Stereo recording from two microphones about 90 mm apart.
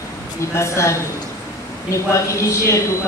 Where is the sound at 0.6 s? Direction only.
30° left (ahead or behind).